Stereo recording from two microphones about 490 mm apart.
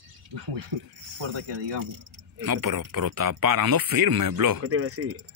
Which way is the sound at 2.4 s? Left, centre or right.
Right.